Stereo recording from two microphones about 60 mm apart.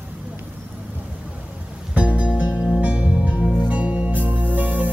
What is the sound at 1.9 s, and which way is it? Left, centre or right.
Music, right.